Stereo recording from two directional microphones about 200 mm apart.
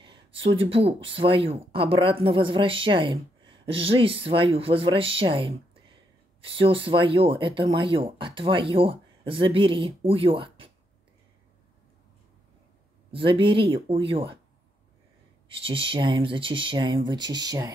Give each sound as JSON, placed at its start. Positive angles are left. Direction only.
{"t": 0.0, "sound": "speech", "side_deg": -25}
{"t": 13.1, "sound": "speech", "side_deg": -25}
{"t": 15.6, "sound": "speech", "side_deg": -25}